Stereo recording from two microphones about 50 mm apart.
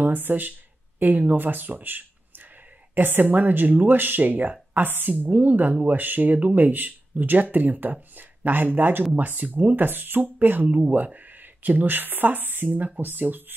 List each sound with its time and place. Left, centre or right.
0.0 s speech: right